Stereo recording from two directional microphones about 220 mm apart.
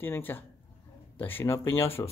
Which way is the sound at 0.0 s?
10° left (ahead or behind).